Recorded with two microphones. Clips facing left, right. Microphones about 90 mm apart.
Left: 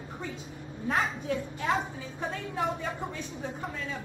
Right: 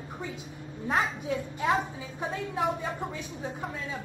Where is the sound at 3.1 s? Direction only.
15° right (ahead or behind).